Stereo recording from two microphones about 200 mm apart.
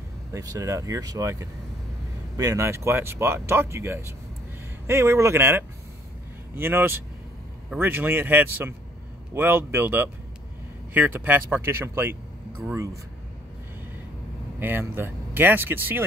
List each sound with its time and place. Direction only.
0.3 s speech: 15° right (ahead or behind)
14.6 s speech: 10° right (ahead or behind)